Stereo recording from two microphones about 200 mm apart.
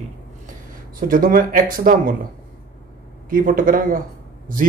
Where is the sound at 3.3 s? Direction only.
45° right (ahead or behind).